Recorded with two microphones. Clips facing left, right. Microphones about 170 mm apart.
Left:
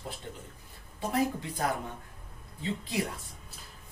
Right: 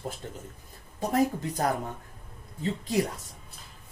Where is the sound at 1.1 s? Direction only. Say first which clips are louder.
Right 4 dB; 40° right (ahead or behind).